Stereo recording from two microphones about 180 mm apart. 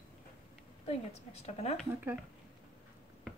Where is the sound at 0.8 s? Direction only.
35° left (ahead or behind).